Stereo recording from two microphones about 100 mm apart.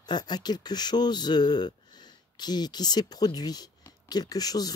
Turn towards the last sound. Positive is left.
turn(degrees=40)  # may be behind; listen again after turning